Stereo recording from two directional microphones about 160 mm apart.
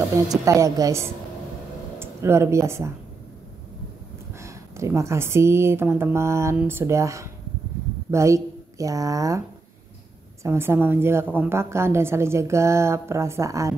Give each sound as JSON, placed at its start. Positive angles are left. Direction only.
{"t": 0.1, "sound": "a woman's voice", "side_deg": -20}
{"t": 4.4, "sound": "a woman's voice", "side_deg": -20}
{"t": 10.4, "sound": "a woman's voice", "side_deg": -15}